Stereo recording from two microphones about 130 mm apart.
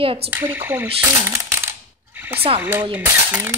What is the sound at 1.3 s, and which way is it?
Coin, 20° right (ahead or behind).